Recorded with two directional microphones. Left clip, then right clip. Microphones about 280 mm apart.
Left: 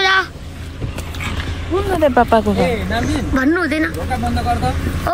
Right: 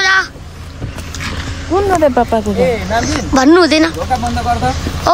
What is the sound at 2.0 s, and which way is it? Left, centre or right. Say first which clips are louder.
Speech: right 1 dB; centre.